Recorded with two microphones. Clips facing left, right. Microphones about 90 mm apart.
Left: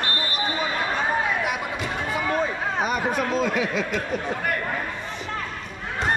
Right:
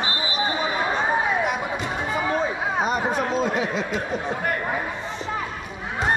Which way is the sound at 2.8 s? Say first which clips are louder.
Even; 20° right (ahead or behind).